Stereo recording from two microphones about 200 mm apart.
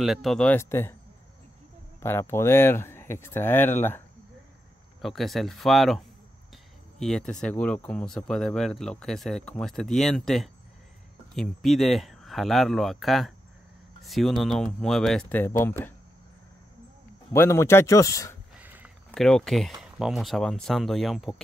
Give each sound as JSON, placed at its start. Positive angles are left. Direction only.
{"t": 0.0, "sound": "speech", "side_deg": 0}
{"t": 2.0, "sound": "speech", "side_deg": 10}
{"t": 5.0, "sound": "speech", "side_deg": 0}
{"t": 17.3, "sound": "speech", "side_deg": 15}
{"t": 18.6, "sound": "a sound", "side_deg": -10}
{"t": 19.2, "sound": "speech", "side_deg": 0}